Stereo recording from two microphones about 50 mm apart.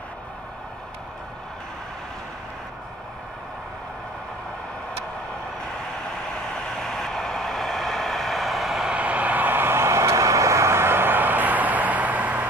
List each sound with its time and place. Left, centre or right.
6.8 s vehicle: centre
8.8 s vehicle: right